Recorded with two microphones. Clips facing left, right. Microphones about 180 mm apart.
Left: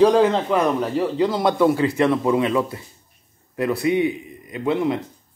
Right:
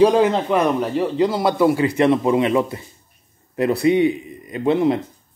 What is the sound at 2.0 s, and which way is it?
Speech, 20° right (ahead or behind).